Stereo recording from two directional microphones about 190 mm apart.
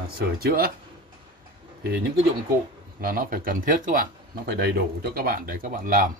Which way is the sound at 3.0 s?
50° right (ahead or behind).